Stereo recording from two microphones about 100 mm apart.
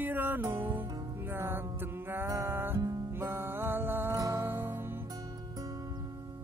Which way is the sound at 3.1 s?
20° right (ahead or behind).